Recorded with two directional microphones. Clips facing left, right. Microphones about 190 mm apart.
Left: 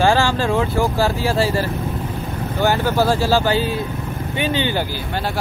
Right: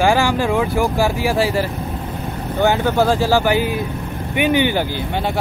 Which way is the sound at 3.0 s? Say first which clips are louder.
Right 1 dB; 15° right (ahead or behind).